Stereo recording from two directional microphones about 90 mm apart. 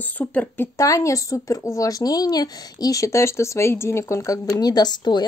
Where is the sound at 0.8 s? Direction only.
35° left (ahead or behind); by 5.2 s 50° left (ahead or behind).